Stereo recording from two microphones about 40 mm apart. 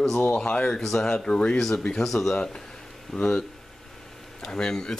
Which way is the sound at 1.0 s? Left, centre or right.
Left.